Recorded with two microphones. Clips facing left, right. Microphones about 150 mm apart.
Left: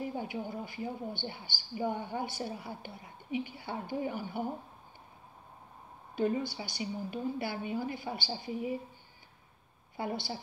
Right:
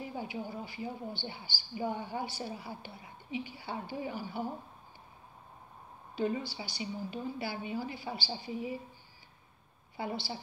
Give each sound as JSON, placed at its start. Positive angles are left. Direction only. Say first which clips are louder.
{"t": 0.0, "sound": "a sound", "louder": "left 3 dB", "side_deg": 50}
{"t": 0.5, "sound": "speech", "louder": "left 2 dB", "side_deg": 50}
{"t": 6.1, "sound": "speech", "louder": "left 2 dB", "side_deg": 50}
{"t": 9.9, "sound": "speech", "louder": "left 1 dB", "side_deg": 50}